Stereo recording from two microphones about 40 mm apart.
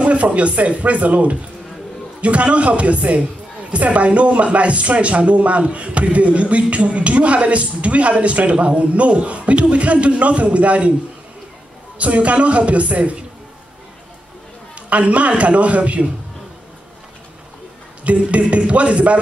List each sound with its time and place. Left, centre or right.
0.0 s speech: right
12.0 s speech: right
14.9 s speech: right
18.0 s speech: right